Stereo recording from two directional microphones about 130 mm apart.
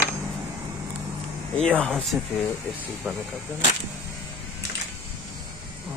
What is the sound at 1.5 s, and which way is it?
Speech, 10° left (ahead or behind).